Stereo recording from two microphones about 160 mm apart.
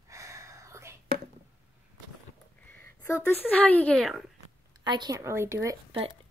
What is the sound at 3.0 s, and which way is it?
Speech, 10° left (ahead or behind).